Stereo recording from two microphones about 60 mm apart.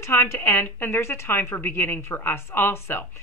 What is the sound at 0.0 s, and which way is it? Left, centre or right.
A woman's voice, left.